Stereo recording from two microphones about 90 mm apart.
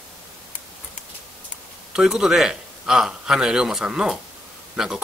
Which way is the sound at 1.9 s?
5° right (ahead or behind).